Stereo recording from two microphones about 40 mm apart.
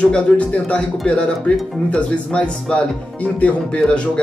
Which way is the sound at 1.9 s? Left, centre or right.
Left.